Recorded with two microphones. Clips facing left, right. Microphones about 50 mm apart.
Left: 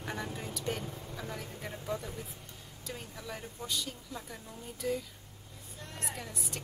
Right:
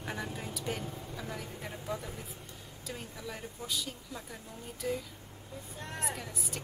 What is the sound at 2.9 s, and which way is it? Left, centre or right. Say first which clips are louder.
Speech: even; centre.